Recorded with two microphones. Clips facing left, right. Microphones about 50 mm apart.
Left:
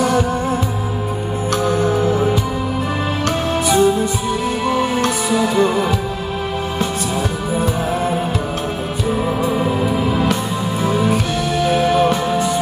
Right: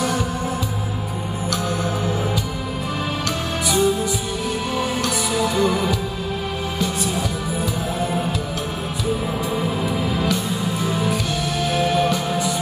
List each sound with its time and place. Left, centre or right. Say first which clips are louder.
3.6 s music: left 4 dB; left
10.8 s music: left 8 dB; left